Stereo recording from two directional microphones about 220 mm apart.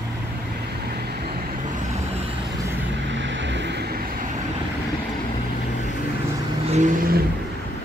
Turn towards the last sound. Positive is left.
turn(degrees=-35)  # may be behind; listen again after turning